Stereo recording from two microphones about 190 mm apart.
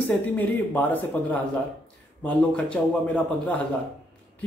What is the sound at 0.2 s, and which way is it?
Speech, 10° left (ahead or behind).